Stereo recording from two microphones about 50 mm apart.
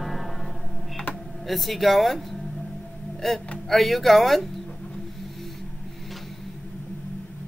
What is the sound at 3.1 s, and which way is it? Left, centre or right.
Speech, centre.